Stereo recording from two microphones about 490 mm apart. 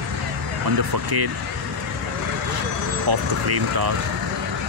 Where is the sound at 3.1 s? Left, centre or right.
Right.